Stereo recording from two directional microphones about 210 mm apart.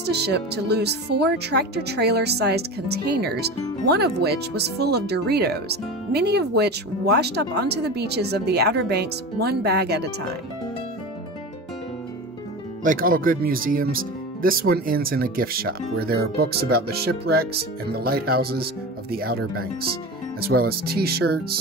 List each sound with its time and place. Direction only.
0.0 s speech: 50° right (ahead or behind)
12.8 s speech: 40° right (ahead or behind)